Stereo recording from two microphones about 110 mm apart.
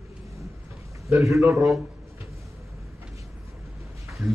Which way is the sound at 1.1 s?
30° right (ahead or behind).